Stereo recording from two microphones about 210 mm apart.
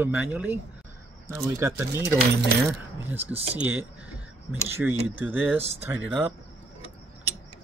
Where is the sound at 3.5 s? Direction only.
10° right (ahead or behind).